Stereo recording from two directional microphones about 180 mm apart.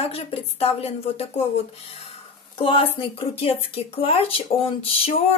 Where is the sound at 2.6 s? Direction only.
30° left (ahead or behind).